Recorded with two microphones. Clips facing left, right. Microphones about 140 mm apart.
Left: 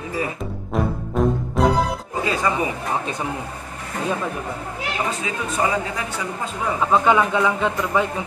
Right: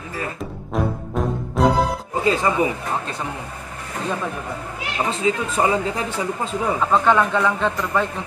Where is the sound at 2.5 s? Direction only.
25° right (ahead or behind).